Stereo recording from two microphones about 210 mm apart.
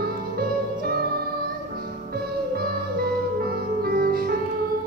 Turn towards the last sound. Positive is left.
turn(degrees=-45)  # may be behind; listen again after turning